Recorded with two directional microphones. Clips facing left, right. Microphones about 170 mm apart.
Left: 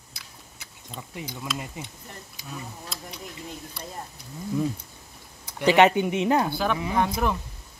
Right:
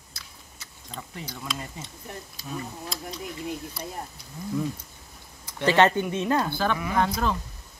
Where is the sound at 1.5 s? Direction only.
15° left (ahead or behind).